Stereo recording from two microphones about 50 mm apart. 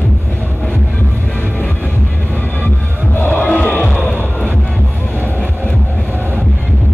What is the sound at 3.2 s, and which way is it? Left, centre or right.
Music, left.